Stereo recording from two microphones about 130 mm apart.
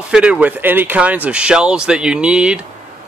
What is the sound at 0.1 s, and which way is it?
Speech, 10° right (ahead or behind).